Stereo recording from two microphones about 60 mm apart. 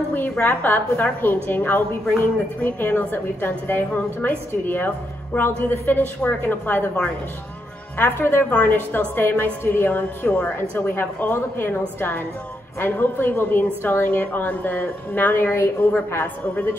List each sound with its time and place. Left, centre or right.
0.1 s a woman's voice: left
8.0 s a woman's voice: left
8.5 s a woman's voice: left
12.8 s a woman's voice: left